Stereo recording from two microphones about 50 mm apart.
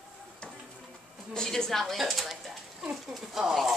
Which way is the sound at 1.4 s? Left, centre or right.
Centre.